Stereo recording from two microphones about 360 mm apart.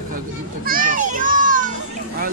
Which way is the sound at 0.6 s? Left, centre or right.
Right.